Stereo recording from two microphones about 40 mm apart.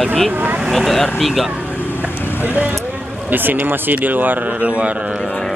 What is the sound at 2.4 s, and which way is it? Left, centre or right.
Speech, right.